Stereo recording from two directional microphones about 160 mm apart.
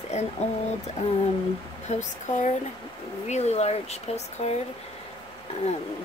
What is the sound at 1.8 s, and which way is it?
Speech, 45° left (ahead or behind).